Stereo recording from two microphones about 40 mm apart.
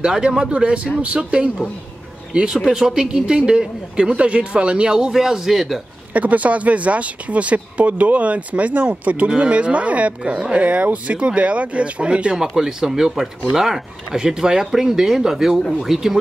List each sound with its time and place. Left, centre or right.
0.0 s speech: centre
2.3 s speech: centre
5.1 s speech: centre
6.1 s speech: right
12.4 s speech: centre